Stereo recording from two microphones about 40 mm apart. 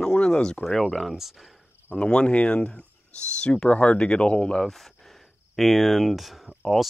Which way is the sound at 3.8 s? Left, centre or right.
Centre.